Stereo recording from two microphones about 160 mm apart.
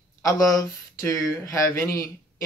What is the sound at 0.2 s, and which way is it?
Speech, 20° left (ahead or behind).